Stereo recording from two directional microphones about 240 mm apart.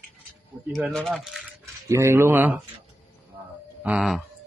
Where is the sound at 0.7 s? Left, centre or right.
Centre.